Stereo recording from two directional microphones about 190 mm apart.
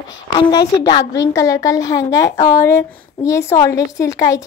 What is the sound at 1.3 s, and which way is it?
Speech, 15° left (ahead or behind).